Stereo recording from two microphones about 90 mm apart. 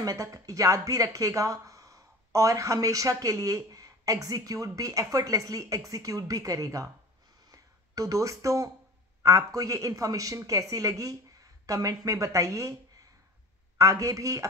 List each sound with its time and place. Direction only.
0.0 s speech: 40° right (ahead or behind)
7.5 s a sound: 40° right (ahead or behind)
9.2 s speech: 35° right (ahead or behind)
13.7 s speech: 35° right (ahead or behind)